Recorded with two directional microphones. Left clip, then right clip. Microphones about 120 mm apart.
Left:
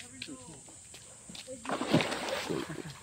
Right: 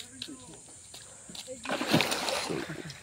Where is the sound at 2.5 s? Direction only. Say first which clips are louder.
Right 1 dB; 20° right (ahead or behind).